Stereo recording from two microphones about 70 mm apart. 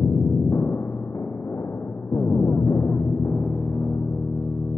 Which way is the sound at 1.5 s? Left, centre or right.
Left.